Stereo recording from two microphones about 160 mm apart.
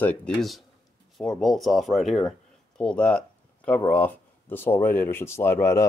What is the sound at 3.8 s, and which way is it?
A man's voice, 10° left (ahead or behind).